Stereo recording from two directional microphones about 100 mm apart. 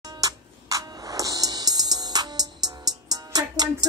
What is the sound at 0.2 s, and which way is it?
Music, 35° right (ahead or behind).